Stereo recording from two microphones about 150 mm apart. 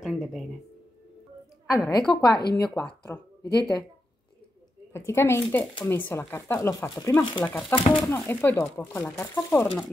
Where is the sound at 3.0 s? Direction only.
25° left (ahead or behind).